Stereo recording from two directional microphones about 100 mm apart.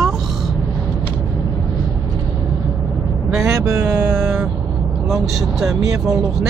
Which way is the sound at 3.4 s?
30° right (ahead or behind).